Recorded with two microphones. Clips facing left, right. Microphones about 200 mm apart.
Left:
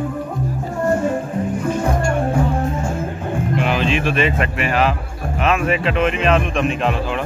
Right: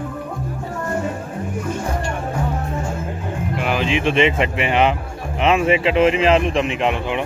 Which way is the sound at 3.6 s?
15° right (ahead or behind).